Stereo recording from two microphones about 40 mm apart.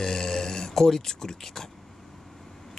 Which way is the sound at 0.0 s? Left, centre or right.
Centre.